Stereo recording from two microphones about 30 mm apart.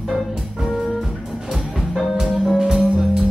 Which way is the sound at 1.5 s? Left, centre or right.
Centre.